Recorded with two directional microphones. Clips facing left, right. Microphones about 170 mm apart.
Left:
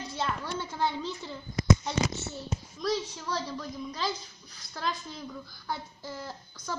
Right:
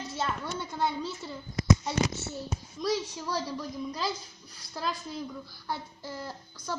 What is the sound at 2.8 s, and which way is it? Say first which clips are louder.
A child's voice: right 1 dB; 10° right (ahead or behind).